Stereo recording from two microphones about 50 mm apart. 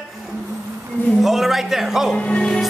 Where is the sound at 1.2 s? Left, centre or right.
Centre.